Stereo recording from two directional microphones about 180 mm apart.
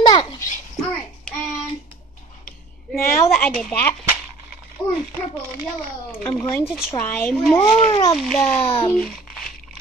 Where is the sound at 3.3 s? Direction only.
5° left (ahead or behind).